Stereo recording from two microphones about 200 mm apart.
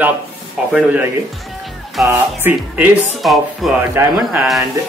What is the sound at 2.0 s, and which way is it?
Speech, 10° right (ahead or behind).